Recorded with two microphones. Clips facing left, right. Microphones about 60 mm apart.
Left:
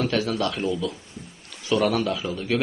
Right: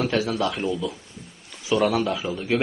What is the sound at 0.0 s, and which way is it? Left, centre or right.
A man's voice, centre.